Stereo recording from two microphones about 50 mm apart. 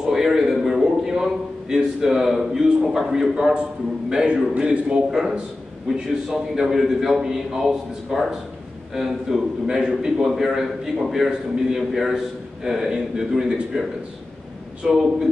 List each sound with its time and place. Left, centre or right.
0.0 s a sound: centre
3.3 s a man's voice: centre
14.8 s a man's voice: centre